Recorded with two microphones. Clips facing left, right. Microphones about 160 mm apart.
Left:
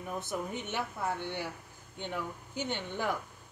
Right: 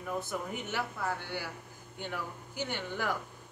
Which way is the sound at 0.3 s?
25° left (ahead or behind).